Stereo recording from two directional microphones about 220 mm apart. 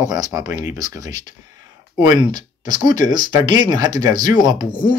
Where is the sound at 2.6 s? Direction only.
20° right (ahead or behind).